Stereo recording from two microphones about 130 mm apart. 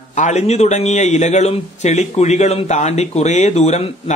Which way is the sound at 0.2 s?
60° left (ahead or behind).